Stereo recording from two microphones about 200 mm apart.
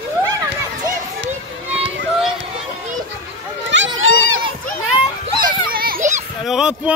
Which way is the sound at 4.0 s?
90° right.